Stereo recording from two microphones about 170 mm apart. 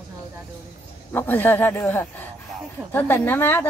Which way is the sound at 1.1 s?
10° left (ahead or behind).